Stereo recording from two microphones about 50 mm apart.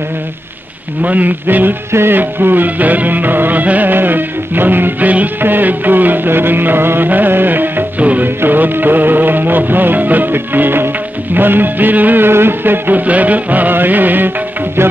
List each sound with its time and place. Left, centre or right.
1.0 s music: right
1.9 s music: right
2.1 s music: right
8.0 s music: right
8.4 s music: right
12.3 s music: right